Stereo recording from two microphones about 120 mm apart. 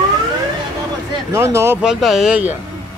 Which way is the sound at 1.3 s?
25° right (ahead or behind).